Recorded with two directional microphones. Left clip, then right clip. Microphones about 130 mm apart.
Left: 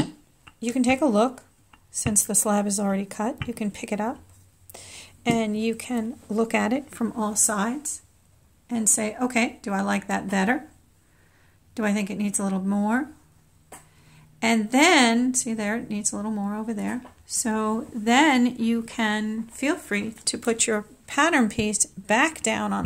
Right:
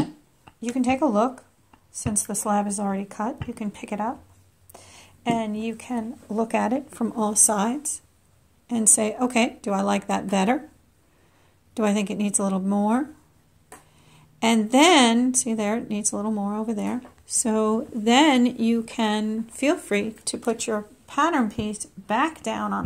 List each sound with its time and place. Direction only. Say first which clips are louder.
0.7 s speech: even; 40° left (ahead or behind)
6.9 s a woman's voice: right 1 dB; 10° left (ahead or behind)
7.2 s speech: right 3 dB; 15° right (ahead or behind)
11.7 s speech: right 3 dB; 15° right (ahead or behind)
14.0 s a woman's voice: right 1 dB; 15° right (ahead or behind)
19.5 s speech: right 3 dB; 25° right (ahead or behind)
20.3 s speech: left 1 dB; 35° left (ahead or behind); by 22.8 s 65° left (ahead or behind)